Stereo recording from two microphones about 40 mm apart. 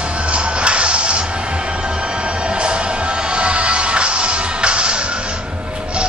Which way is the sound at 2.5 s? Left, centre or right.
Right.